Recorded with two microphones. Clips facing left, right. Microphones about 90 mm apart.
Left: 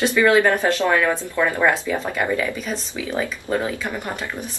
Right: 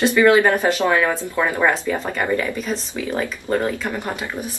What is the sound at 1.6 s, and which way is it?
Speech, centre (ahead or behind).